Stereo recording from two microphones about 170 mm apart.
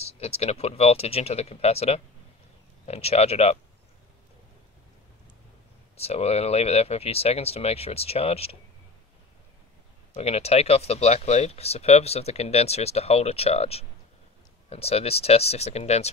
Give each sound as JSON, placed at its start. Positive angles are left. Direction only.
{"t": 0.0, "sound": "speech", "side_deg": 40}
{"t": 5.9, "sound": "speech", "side_deg": 35}
{"t": 10.1, "sound": "speech", "side_deg": 40}